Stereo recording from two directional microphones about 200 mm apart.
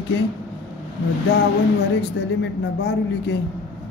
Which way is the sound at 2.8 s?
60° left (ahead or behind).